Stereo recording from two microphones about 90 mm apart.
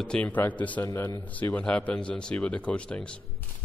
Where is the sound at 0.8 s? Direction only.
25° left (ahead or behind).